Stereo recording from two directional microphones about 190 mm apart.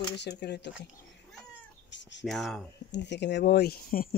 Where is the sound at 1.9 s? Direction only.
70° left (ahead or behind).